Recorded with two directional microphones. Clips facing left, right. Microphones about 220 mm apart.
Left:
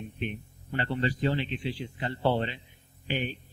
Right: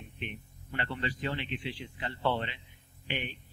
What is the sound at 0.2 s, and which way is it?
A man's voice, 35° left (ahead or behind).